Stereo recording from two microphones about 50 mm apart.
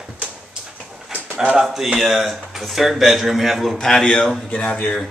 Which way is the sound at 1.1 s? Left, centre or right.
Right.